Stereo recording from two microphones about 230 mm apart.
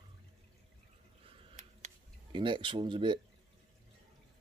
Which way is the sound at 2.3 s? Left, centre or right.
Right.